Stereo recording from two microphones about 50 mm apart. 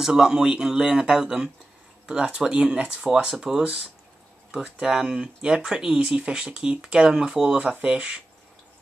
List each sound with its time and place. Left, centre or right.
0.0 s speech: centre